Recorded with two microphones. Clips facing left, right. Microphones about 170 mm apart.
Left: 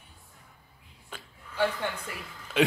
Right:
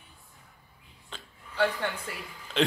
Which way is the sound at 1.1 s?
10° left (ahead or behind).